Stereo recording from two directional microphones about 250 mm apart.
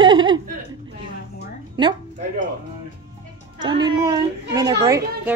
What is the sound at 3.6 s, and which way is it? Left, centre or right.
Speech, centre.